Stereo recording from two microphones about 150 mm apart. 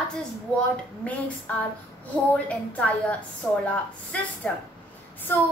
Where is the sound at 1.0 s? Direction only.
10° left (ahead or behind).